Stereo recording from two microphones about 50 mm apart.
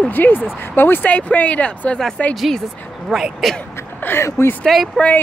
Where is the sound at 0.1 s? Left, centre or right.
Left.